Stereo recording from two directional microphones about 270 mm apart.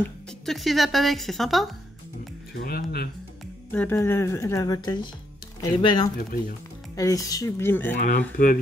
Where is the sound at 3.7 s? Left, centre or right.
Centre.